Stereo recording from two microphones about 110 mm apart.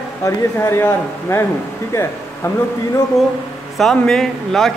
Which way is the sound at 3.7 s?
5° left (ahead or behind).